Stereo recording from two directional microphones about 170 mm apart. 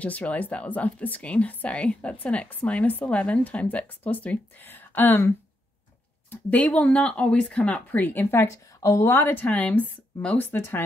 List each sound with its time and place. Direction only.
0.0 s speech: 10° left (ahead or behind)
6.3 s speech: 10° left (ahead or behind)